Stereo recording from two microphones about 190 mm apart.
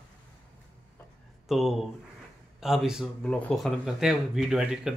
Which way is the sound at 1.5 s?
Centre (ahead or behind).